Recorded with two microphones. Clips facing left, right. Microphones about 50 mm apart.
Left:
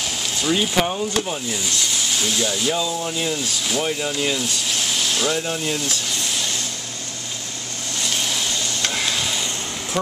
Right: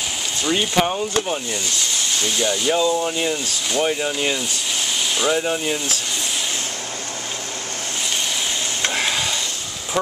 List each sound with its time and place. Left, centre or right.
0.4 s speech: centre
1.5 s speech: centre
2.7 s speech: centre
8.0 s vehicle: centre
8.8 s stir: right